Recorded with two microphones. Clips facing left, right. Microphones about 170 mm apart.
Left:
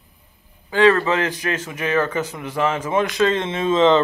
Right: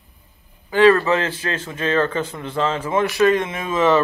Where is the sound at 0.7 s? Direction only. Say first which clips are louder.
Right 2 dB; 20° left (ahead or behind).